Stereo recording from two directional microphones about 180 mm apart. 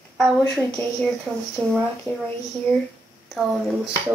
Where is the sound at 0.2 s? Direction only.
5° left (ahead or behind).